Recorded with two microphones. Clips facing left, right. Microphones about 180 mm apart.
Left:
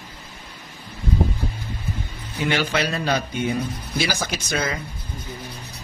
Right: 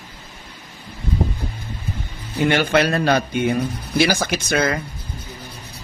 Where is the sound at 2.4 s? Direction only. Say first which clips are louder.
Right 6 dB; 55° right (ahead or behind).